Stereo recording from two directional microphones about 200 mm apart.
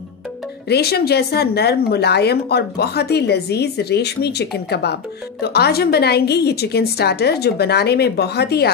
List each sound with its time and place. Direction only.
0.7 s speech: 50° left (ahead or behind)